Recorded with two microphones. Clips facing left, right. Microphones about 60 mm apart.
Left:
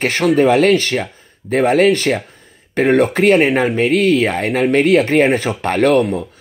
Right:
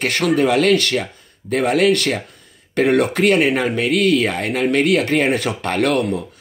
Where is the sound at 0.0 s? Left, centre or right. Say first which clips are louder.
Left 4 dB; left.